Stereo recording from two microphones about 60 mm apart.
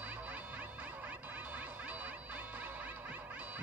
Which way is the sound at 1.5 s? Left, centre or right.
Right.